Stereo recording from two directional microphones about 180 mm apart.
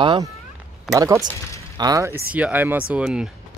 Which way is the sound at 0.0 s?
25° right (ahead or behind).